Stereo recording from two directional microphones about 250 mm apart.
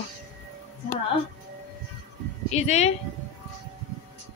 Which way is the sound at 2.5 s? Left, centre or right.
Left.